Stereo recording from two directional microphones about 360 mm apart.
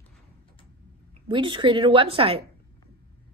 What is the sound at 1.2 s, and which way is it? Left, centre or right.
Speech, centre.